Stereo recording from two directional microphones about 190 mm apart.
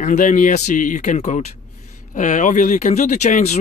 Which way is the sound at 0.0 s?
40° left (ahead or behind).